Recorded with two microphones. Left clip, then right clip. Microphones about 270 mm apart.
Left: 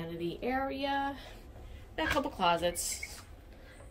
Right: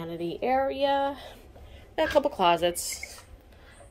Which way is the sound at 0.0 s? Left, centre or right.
Centre.